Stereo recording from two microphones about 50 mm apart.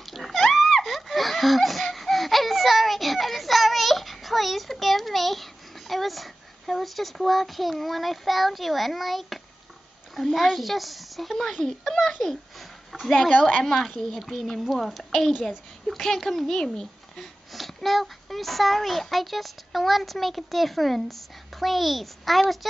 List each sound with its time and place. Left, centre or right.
0.0 s a sound: centre
10.1 s a child's voice: centre
13.7 s a child's voice: centre